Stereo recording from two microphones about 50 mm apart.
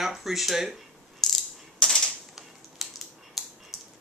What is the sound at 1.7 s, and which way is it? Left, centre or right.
Typewriter, centre.